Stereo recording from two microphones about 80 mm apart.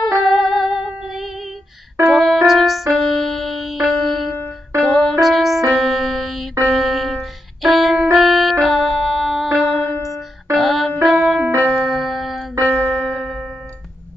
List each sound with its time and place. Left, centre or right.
0.0 s music: centre
12.6 s music: centre